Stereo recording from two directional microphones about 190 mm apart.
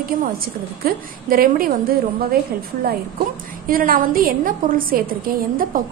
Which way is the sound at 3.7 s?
50° right (ahead or behind).